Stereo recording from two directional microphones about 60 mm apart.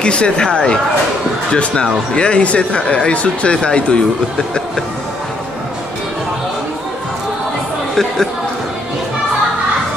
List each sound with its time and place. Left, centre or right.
0.0 s speech: centre
7.9 s speech: centre